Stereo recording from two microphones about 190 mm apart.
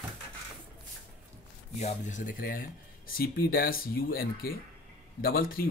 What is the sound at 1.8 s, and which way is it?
Speech, 40° left (ahead or behind).